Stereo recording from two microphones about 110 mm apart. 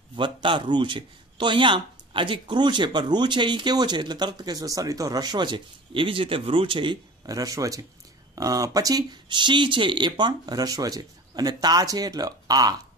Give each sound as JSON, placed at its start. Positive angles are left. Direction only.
{"t": 0.1, "sound": "a man's voice", "side_deg": -45}
{"t": 7.2, "sound": "speech", "side_deg": -35}